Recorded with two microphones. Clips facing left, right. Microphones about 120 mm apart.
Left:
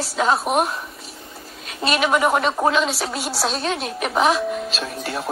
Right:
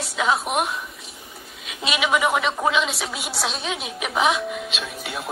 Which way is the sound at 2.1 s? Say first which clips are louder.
Left 1 dB; 40° left (ahead or behind).